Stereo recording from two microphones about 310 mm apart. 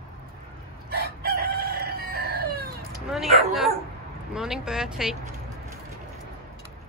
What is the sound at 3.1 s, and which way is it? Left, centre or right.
Speech, centre.